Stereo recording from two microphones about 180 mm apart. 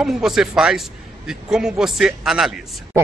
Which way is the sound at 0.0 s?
Centre (ahead or behind).